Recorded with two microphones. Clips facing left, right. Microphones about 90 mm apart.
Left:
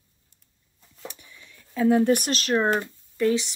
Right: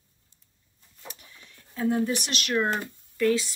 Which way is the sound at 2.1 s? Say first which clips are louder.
Left 5 dB; 40° left (ahead or behind).